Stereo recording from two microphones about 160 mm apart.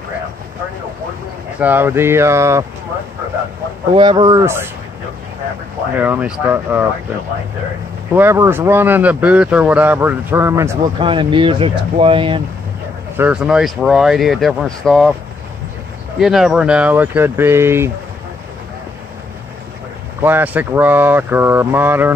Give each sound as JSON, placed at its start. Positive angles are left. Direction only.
{"t": 1.6, "sound": "speech", "side_deg": -10}
{"t": 3.9, "sound": "speech", "side_deg": -30}
{"t": 5.9, "sound": "speech", "side_deg": -10}
{"t": 8.1, "sound": "speech", "side_deg": -15}
{"t": 11.0, "sound": "speech", "side_deg": -30}
{"t": 13.2, "sound": "speech", "side_deg": -5}
{"t": 16.2, "sound": "speech", "side_deg": -5}
{"t": 20.2, "sound": "speech", "side_deg": -10}